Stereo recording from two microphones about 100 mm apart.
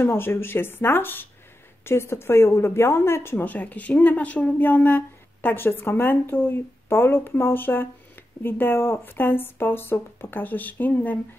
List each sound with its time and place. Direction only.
0.0 s a woman's voice: 25° left (ahead or behind)